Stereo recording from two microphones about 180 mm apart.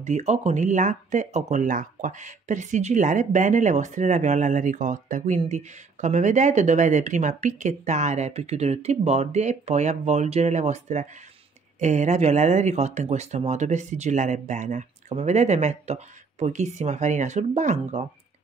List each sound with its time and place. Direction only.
0.0 s speech: 40° right (ahead or behind)